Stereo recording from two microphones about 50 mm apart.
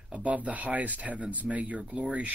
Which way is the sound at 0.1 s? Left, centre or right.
Right.